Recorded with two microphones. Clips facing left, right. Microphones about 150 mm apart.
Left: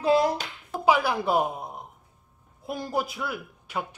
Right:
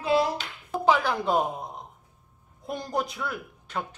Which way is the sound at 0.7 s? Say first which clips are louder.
Even; 10° left (ahead or behind).